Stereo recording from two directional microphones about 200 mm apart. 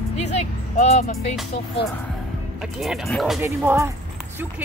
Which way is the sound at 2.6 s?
Centre (ahead or behind).